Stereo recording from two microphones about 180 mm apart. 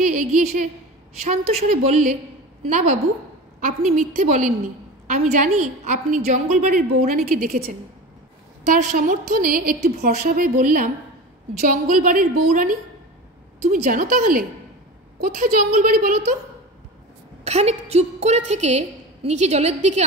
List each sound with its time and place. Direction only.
0.0 s a sound: 45° right (ahead or behind)
1.2 s a woman's voice: 35° right (ahead or behind); by 7.7 s 55° right (ahead or behind)
8.6 s a woman's voice: 45° right (ahead or behind)
17.5 s a woman's voice: 35° right (ahead or behind)